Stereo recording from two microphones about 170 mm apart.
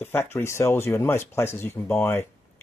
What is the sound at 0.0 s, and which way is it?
Speech, 15° left (ahead or behind).